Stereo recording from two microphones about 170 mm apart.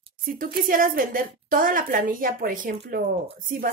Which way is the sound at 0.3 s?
55° right (ahead or behind).